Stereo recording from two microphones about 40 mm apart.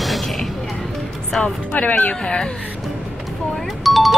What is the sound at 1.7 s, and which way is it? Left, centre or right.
Speech, left.